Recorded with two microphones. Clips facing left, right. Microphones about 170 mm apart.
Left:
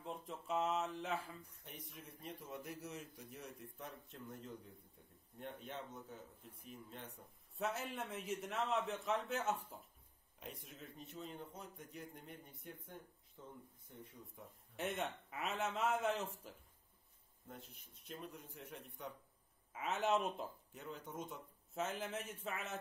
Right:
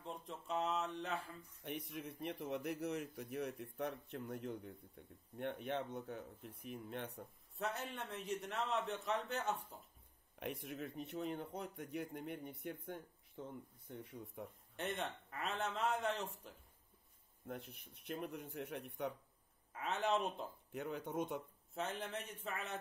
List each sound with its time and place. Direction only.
0.0 s a man's voice: centre (ahead or behind)
1.6 s a man's voice: 65° right (ahead or behind)
7.5 s a man's voice: centre (ahead or behind)
10.4 s a man's voice: 65° right (ahead or behind)
14.8 s a man's voice: centre (ahead or behind)
17.5 s a man's voice: 65° right (ahead or behind)
19.7 s a man's voice: centre (ahead or behind)
20.7 s a man's voice: 65° right (ahead or behind)
21.7 s a man's voice: centre (ahead or behind)